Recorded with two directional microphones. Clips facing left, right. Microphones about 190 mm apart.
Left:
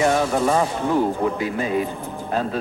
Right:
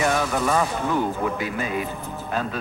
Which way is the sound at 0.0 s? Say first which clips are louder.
Left 4 dB; 30° left (ahead or behind).